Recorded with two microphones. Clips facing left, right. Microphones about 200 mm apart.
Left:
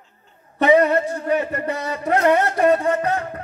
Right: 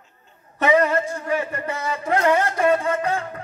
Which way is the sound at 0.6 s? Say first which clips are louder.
Left 3 dB; 35° left (ahead or behind).